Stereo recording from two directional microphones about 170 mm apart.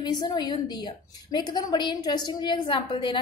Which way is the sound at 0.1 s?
25° left (ahead or behind).